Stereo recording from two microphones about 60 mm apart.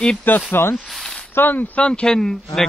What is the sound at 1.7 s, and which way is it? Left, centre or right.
Speech, centre.